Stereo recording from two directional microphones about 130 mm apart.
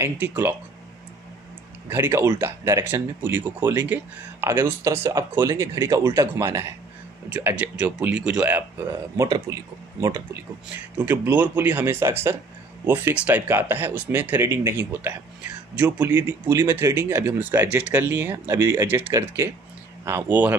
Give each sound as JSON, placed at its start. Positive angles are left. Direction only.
{"t": 0.0, "sound": "speech", "side_deg": -15}
{"t": 1.9, "sound": "speech", "side_deg": -15}
{"t": 9.1, "sound": "speech", "side_deg": -25}
{"t": 11.0, "sound": "speech", "side_deg": -10}